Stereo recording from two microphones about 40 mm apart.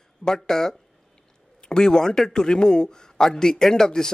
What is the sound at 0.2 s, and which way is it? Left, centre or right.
A man's voice, centre.